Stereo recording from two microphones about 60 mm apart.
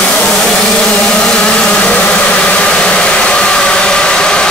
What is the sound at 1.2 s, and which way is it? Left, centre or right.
Vehicle, centre.